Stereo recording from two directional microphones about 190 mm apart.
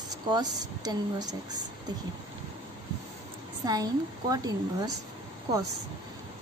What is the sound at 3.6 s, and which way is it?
Speech, 20° right (ahead or behind).